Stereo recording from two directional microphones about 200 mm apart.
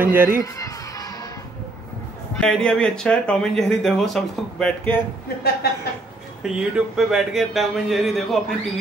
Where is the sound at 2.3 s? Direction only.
5° left (ahead or behind).